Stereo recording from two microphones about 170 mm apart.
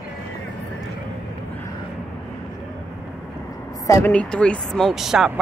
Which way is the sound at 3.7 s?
20° left (ahead or behind).